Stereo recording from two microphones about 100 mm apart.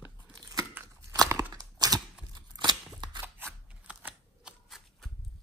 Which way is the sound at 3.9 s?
10° right (ahead or behind).